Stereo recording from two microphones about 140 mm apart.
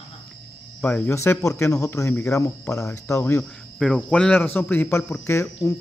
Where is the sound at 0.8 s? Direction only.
15° left (ahead or behind).